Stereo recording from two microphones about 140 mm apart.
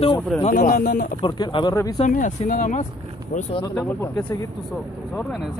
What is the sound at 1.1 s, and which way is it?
Speech, 35° left (ahead or behind).